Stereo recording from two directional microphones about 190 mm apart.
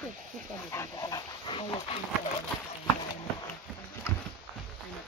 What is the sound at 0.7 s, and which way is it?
Speech, 15° left (ahead or behind).